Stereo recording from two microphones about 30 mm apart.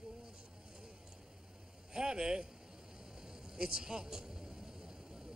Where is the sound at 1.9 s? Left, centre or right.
Right.